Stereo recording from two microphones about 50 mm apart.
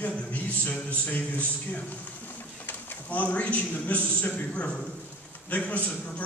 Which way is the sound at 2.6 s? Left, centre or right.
Left.